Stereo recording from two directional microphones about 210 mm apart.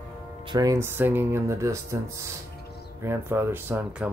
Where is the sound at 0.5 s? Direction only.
15° right (ahead or behind).